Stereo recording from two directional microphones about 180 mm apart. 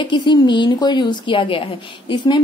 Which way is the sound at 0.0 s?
25° left (ahead or behind).